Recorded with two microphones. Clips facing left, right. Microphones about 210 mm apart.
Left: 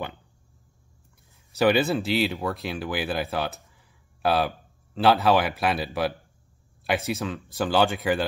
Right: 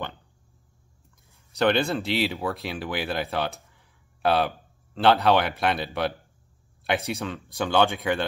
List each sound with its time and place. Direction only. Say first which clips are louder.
1.6 s speech: left 2 dB; 5° left (ahead or behind)